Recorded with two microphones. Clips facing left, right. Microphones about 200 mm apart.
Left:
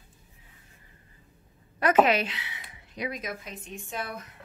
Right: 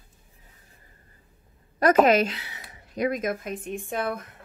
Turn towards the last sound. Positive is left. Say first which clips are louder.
# right 7 dB
turn(degrees=-55)  # may be behind; listen again after turning